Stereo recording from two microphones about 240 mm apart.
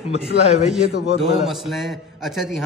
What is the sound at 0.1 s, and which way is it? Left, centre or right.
Speech, left.